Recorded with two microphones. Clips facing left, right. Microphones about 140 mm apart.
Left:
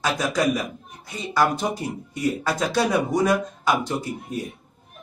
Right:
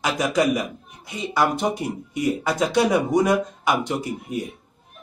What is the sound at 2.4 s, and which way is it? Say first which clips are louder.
Speech: right 3 dB; 20° right (ahead or behind).